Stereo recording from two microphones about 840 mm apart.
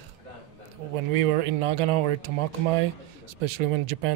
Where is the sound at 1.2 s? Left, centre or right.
Right.